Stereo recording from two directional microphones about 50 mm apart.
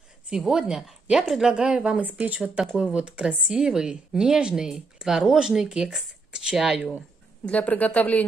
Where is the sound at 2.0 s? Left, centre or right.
Right.